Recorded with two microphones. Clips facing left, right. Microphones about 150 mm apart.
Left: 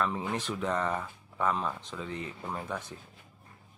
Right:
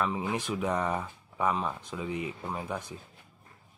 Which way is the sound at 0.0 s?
10° right (ahead or behind).